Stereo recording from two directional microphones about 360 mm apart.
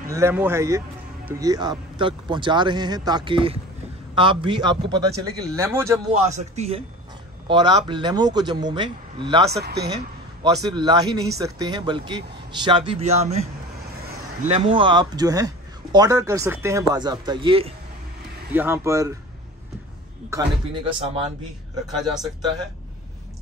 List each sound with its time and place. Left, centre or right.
0.1 s speech: centre
6.3 s speech: centre
9.5 s speech: right
10.4 s speech: centre
20.2 s speech: centre
21.9 s a man's voice: centre